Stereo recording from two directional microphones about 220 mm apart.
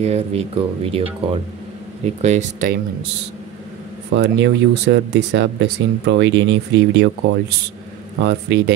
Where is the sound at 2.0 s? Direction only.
30° right (ahead or behind).